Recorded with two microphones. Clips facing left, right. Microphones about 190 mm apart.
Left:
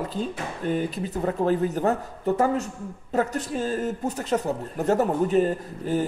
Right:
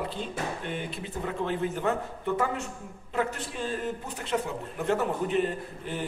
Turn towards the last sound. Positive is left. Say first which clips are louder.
# left 8 dB
turn(degrees=40)  # may be behind; listen again after turning